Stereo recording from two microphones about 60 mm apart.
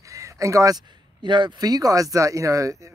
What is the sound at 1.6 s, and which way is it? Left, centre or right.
Speech, right.